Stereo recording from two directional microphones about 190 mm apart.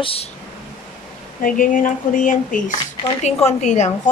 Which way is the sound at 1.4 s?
45° left (ahead or behind).